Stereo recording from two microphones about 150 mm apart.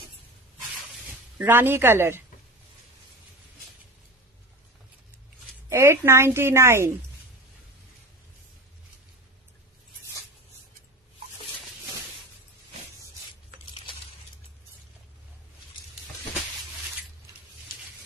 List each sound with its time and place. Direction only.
1.4 s a woman's voice: 15° right (ahead or behind)
5.7 s a woman's voice: 15° right (ahead or behind)